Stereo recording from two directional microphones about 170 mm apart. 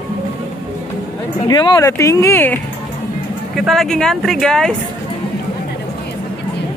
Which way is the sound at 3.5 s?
Centre (ahead or behind).